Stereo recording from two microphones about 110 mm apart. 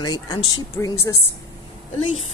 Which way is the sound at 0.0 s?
35° left (ahead or behind).